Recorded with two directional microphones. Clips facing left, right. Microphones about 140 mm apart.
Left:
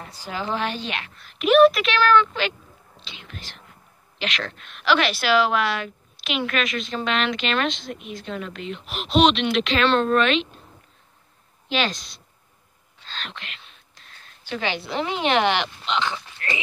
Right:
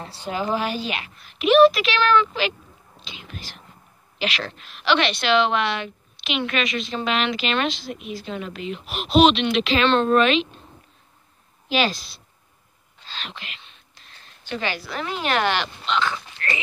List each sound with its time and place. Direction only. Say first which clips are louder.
0.3 s a woman's voice: right 2 dB; 10° right (ahead or behind)
11.7 s a woman's voice: right 2 dB; 5° right (ahead or behind)
13.6 s a sound: even; centre (ahead or behind)
14.4 s a woman's voice: left 1 dB; 15° left (ahead or behind)
14.8 s speech: left 3 dB; 25° left (ahead or behind)